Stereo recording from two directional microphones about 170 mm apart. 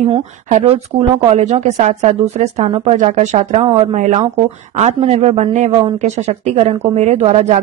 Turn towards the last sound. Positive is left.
turn(degrees=-40)  # may be behind; listen again after turning